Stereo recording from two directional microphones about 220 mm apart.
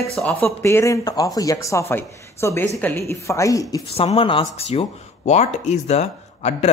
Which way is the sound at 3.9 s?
25° left (ahead or behind).